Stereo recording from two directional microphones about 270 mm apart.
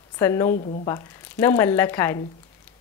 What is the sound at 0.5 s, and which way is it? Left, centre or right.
Speech, left.